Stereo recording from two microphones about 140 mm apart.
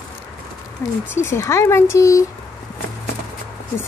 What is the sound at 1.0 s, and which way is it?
Speech, 15° left (ahead or behind).